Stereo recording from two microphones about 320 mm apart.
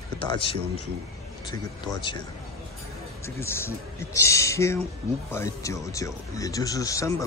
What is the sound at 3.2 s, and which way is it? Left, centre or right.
Speech, centre.